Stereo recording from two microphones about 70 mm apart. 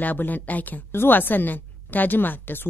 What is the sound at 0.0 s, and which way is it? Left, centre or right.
A woman's voice, left.